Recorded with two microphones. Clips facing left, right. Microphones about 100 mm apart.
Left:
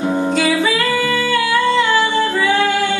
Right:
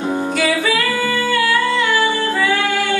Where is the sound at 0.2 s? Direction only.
25° left (ahead or behind).